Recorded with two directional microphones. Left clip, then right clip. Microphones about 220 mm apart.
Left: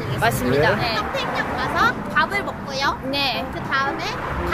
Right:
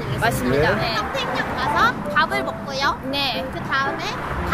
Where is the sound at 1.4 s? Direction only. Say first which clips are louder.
Right 2 dB; 10° right (ahead or behind).